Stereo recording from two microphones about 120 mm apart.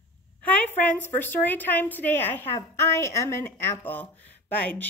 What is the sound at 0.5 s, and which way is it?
A woman's voice, 15° left (ahead or behind).